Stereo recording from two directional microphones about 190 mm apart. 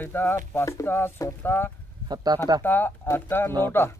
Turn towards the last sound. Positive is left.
turn(degrees=10)  # may be behind; listen again after turning